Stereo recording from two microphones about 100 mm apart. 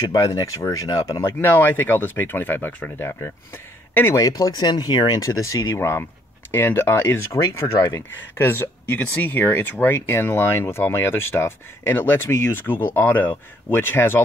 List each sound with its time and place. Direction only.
0.1 s speech: 35° left (ahead or behind)
1.4 s speech: 20° left (ahead or behind)
4.2 s speech: 40° left (ahead or behind); by 14.2 s 25° left (ahead or behind)